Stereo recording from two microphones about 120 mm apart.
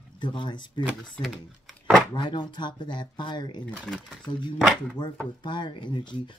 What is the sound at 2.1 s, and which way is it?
Speech, 40° left (ahead or behind).